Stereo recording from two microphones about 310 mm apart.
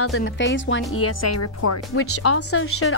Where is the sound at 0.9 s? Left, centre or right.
Left.